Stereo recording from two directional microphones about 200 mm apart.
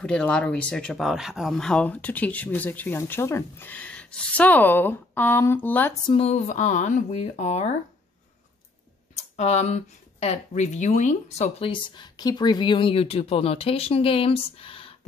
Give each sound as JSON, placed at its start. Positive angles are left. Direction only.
{"t": 0.0, "sound": "speech", "side_deg": 5}
{"t": 6.0, "sound": "speech", "side_deg": 30}
{"t": 9.4, "sound": "speech", "side_deg": 35}